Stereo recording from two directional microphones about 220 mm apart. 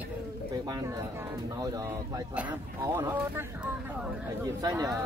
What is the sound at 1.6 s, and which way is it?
Speech, 15° right (ahead or behind).